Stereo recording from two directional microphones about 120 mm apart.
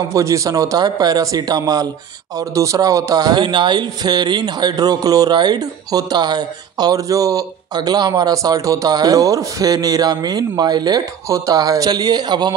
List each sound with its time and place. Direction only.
0.1 s speech: 25° right (ahead or behind)